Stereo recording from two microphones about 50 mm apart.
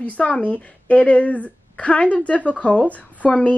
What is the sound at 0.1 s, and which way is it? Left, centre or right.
A woman's voice, left.